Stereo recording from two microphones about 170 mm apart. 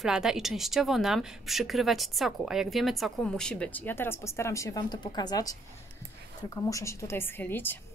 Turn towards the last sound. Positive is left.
turn(degrees=10)  # may be behind; listen again after turning